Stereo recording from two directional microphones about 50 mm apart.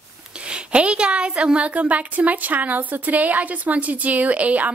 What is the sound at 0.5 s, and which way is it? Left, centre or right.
A woman's voice, right.